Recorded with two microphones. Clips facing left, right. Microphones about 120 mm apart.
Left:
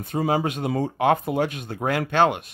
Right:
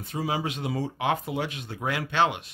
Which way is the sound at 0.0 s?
50° left (ahead or behind).